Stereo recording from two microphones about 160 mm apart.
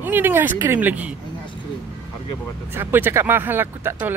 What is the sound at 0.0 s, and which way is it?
Speech, 10° right (ahead or behind).